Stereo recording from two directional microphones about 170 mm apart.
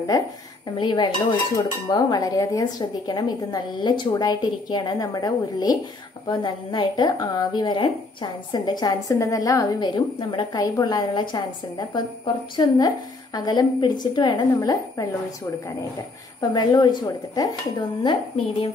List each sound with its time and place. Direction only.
0.1 s a woman's voice: 20° left (ahead or behind)
16.3 s a woman's voice: 25° left (ahead or behind)